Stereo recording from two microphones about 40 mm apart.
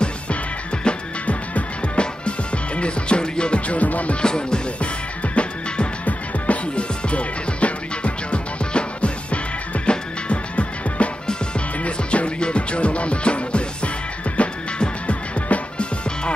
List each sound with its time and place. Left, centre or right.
0.8 s music: left
4.2 s music: left
5.3 s music: left